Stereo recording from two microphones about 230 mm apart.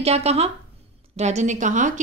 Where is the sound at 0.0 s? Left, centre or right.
Right.